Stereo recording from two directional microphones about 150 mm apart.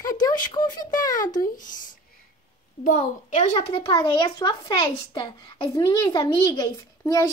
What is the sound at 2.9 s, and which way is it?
Speech, 55° left (ahead or behind).